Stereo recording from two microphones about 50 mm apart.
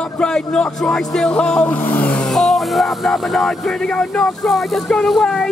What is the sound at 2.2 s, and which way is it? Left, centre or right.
Speech, centre.